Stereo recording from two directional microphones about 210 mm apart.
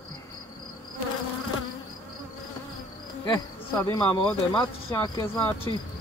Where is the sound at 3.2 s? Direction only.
15° left (ahead or behind).